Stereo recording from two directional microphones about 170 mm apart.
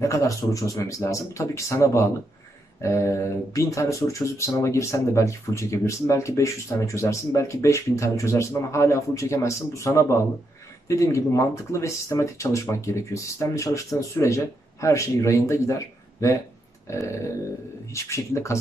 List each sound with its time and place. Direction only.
0.0 s speech: 20° left (ahead or behind)
16.8 s a sound: 15° left (ahead or behind)
17.9 s speech: 15° left (ahead or behind)